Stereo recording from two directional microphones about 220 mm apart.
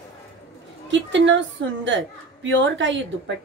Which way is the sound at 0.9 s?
55° right (ahead or behind).